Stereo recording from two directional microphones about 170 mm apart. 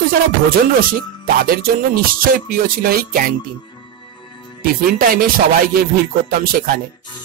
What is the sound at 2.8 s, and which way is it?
Speech, 60° right (ahead or behind).